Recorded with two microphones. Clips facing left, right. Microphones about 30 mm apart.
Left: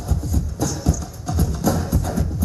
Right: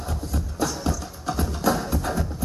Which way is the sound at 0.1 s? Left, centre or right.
Right.